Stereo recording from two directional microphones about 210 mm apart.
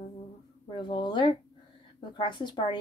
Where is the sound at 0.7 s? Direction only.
20° left (ahead or behind).